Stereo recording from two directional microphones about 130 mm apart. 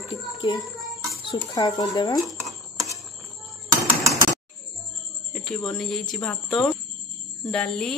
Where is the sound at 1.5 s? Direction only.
30° left (ahead or behind).